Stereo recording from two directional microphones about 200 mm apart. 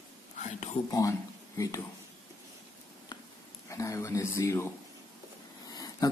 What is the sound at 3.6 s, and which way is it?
Speech, 15° left (ahead or behind).